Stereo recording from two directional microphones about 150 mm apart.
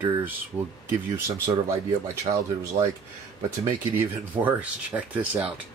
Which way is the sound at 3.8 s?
15° right (ahead or behind).